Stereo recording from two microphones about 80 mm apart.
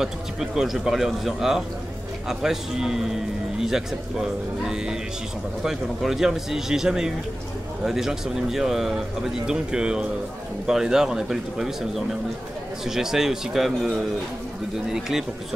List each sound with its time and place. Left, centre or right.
0.0 s a man's voice: centre